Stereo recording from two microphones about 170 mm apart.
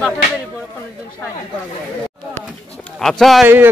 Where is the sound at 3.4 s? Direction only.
10° right (ahead or behind).